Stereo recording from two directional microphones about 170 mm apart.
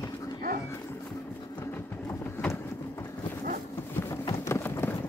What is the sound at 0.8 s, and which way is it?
Music, 20° left (ahead or behind).